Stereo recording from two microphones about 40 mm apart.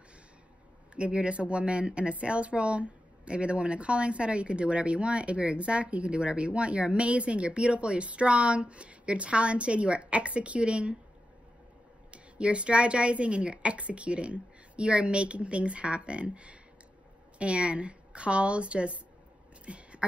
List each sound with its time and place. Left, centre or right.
0.9 s speech: right
12.1 s speech: right
19.6 s a sound: right